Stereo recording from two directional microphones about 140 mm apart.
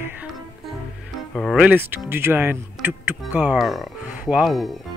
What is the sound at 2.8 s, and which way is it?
Music, centre (ahead or behind).